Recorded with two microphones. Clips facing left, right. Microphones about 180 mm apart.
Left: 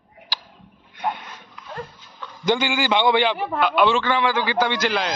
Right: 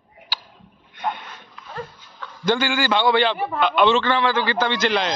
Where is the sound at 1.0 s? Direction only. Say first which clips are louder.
Left 1 dB; 10° left (ahead or behind).